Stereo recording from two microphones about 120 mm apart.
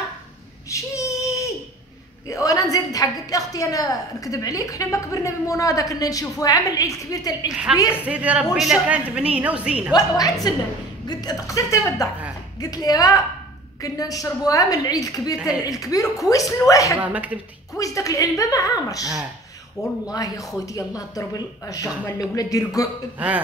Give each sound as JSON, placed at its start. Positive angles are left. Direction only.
{"t": 0.7, "sound": "a sound", "side_deg": 25}
{"t": 2.2, "sound": "a woman's voice", "side_deg": 25}
{"t": 7.9, "sound": "a woman's voice", "side_deg": -10}
{"t": 9.9, "sound": "a woman's voice", "side_deg": 30}
{"t": 15.3, "sound": "a woman's voice", "side_deg": -10}
{"t": 15.6, "sound": "a woman's voice", "side_deg": 30}
{"t": 17.0, "sound": "a woman's voice", "side_deg": -10}
{"t": 17.7, "sound": "a woman's voice", "side_deg": 30}
{"t": 20.1, "sound": "a woman's voice", "side_deg": 30}
{"t": 23.1, "sound": "a woman's voice", "side_deg": -15}